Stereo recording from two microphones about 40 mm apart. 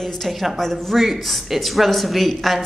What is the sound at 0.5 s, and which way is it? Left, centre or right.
A woman's voice, centre.